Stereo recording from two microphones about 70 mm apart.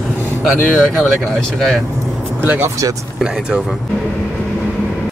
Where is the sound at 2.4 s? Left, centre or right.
Right.